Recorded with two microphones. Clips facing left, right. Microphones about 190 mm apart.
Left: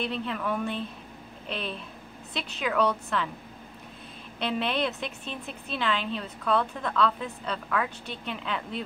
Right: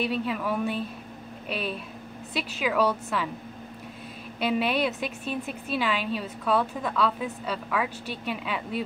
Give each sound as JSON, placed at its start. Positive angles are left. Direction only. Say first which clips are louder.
{"t": 0.0, "sound": "a woman's voice", "louder": "right 3 dB", "side_deg": -5}
{"t": 4.4, "sound": "a woman's voice", "louder": "right 3 dB", "side_deg": -10}